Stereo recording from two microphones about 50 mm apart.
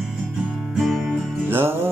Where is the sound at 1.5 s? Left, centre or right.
Right.